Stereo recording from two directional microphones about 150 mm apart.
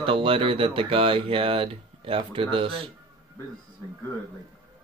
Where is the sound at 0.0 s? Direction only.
40° right (ahead or behind).